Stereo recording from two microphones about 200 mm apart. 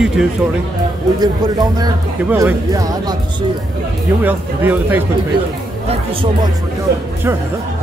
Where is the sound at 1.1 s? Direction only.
20° right (ahead or behind).